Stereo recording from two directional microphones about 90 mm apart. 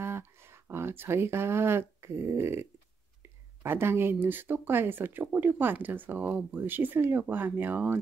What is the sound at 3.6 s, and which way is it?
Speech, 25° right (ahead or behind).